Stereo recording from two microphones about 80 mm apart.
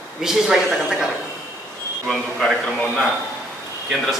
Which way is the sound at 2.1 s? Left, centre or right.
Centre.